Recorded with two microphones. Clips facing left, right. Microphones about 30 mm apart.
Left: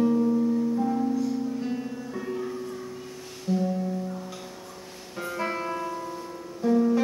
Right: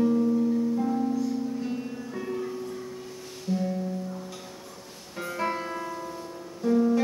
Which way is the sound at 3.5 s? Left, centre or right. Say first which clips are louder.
Left 2 dB; centre.